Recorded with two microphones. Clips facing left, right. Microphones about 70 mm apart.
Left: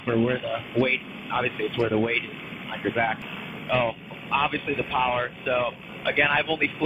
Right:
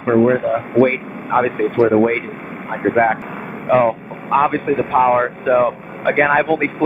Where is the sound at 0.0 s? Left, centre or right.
Right.